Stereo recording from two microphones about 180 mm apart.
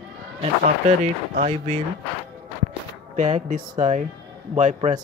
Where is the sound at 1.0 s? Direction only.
40° right (ahead or behind).